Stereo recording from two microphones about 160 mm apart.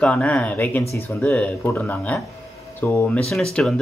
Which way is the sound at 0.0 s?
5° left (ahead or behind).